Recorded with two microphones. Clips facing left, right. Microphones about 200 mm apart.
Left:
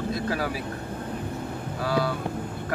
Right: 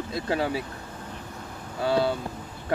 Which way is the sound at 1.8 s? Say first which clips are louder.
Right 3 dB; 25° right (ahead or behind).